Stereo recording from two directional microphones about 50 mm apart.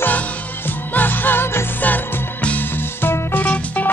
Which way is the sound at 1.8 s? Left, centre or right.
Left.